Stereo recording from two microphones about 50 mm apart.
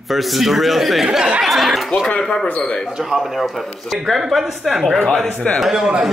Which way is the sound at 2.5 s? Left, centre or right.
Left.